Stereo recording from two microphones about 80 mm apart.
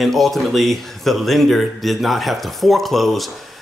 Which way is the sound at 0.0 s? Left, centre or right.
Centre.